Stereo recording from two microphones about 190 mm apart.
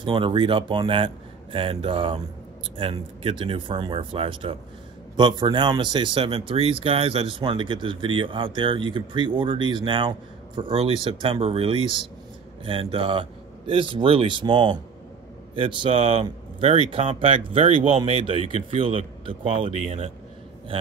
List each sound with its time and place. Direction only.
0.0 s speech: 25° right (ahead or behind)